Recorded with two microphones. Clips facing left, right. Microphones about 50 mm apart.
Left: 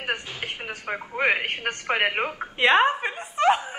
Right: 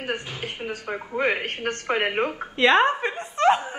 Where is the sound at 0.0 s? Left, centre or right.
Left.